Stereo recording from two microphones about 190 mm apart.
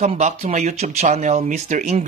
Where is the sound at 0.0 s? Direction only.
35° right (ahead or behind).